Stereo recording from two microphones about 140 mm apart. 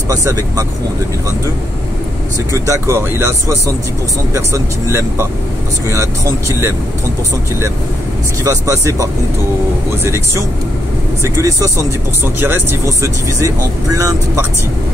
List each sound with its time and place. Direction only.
0.1 s speech: 20° right (ahead or behind)
2.5 s speech: 20° right (ahead or behind)
8.5 s speech: 25° right (ahead or behind)